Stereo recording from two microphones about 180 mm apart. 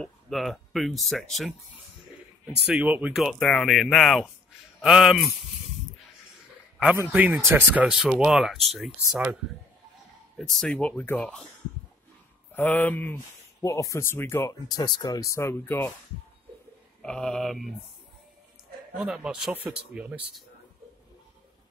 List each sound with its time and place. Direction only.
0.0 s speech: centre (ahead or behind)
2.6 s speech: 5° right (ahead or behind)
6.8 s speech: 5° right (ahead or behind)
12.5 s speech: 10° left (ahead or behind)
17.0 s speech: 5° left (ahead or behind)
18.9 s speech: 5° right (ahead or behind)